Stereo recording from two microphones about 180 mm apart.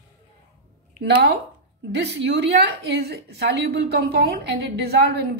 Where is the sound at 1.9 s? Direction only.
70° right (ahead or behind).